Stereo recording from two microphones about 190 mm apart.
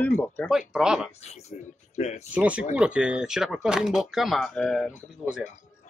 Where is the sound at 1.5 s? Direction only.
40° left (ahead or behind).